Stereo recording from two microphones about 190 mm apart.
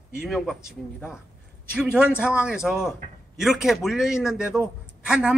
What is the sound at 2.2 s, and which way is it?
A man's voice, 5° right (ahead or behind).